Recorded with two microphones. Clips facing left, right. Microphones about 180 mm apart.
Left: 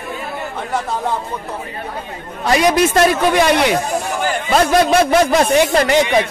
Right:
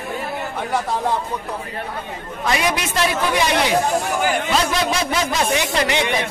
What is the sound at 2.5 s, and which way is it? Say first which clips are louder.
Speech: left 8 dB; 45° left (ahead or behind).